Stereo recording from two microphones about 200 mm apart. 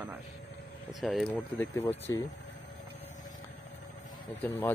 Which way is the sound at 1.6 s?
10° left (ahead or behind).